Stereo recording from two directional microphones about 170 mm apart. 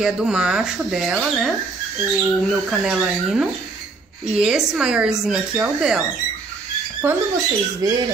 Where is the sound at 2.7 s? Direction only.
5° right (ahead or behind); by 8.0 s 20° right (ahead or behind).